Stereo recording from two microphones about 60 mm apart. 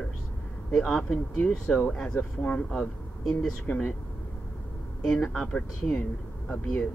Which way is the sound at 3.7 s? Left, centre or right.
Left.